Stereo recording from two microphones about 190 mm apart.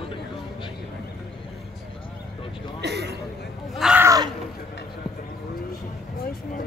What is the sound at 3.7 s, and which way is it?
Speech, 5° right (ahead or behind).